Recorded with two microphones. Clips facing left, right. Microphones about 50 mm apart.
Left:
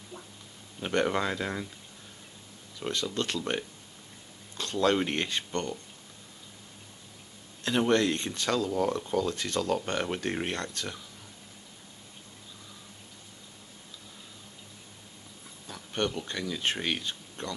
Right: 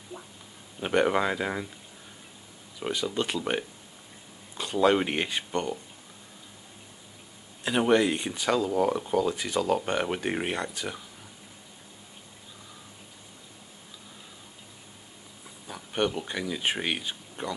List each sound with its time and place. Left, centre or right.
0.1 s a sound: centre
0.7 s speech: centre
2.8 s speech: centre
7.6 s speech: centre
15.6 s speech: centre